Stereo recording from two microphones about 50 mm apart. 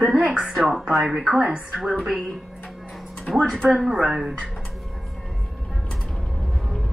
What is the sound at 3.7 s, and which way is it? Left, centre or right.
Speech, centre.